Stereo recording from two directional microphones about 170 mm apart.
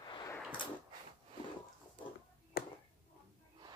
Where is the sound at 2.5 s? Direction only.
65° left (ahead or behind).